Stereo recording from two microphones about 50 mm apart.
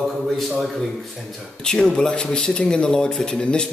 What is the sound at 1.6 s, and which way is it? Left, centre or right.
Speech, centre.